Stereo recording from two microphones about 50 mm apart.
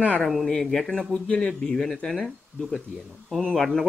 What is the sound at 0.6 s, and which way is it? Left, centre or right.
Speech, centre.